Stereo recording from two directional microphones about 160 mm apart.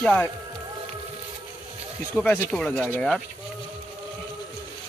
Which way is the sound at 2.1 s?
5° left (ahead or behind).